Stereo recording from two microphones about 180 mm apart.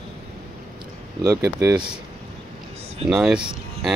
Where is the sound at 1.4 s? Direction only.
15° right (ahead or behind).